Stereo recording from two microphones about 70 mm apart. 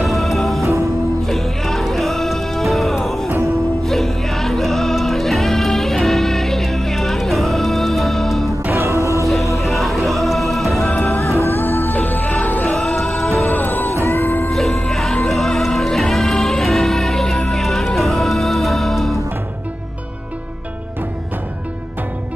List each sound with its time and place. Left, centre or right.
0.2 s music: centre
8.7 s music: right
9.6 s music: centre
10.9 s music: left
11.1 s music: left
12.6 s music: centre
13.4 s music: left
14.5 s music: centre